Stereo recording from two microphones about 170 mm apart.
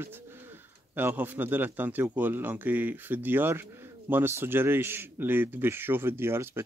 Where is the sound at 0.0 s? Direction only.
15° right (ahead or behind).